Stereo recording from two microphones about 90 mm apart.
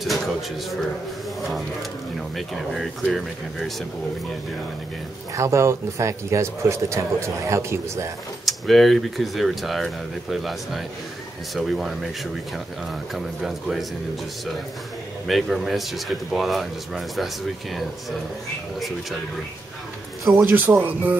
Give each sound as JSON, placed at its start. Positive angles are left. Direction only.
{"t": 0.0, "sound": "speech", "side_deg": 0}
{"t": 5.3, "sound": "speech", "side_deg": -35}
{"t": 8.5, "sound": "speech", "side_deg": 0}
{"t": 15.2, "sound": "speech", "side_deg": 0}
{"t": 20.3, "sound": "speech", "side_deg": -20}